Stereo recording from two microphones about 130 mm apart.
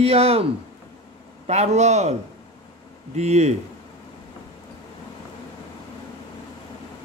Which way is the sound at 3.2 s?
60° right (ahead or behind).